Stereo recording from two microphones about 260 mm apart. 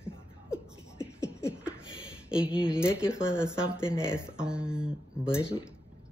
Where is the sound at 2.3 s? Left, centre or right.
Centre.